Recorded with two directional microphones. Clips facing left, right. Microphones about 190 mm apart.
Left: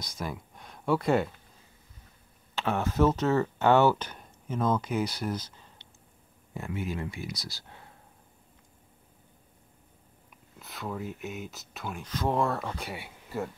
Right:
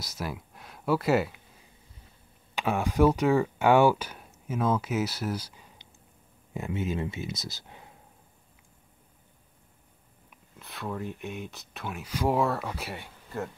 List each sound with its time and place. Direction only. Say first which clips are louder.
0.0 s speech: right 1 dB; 5° right (ahead or behind)
2.5 s speech: right 1 dB; 10° right (ahead or behind)
10.6 s speech: right 1 dB; centre (ahead or behind)
13.0 s a sound: left 1 dB; 10° left (ahead or behind)